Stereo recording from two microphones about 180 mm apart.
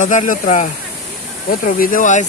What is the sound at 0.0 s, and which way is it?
Speech, 45° left (ahead or behind).